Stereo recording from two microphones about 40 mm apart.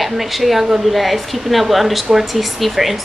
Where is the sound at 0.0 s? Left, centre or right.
Centre.